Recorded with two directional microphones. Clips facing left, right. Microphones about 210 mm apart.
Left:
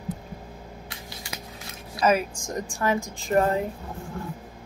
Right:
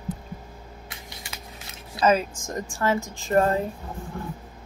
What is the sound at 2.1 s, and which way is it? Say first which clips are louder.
A woman's voice: right 1 dB; 10° left (ahead or behind).